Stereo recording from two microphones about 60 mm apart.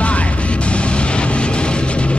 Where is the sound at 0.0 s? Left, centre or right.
Left.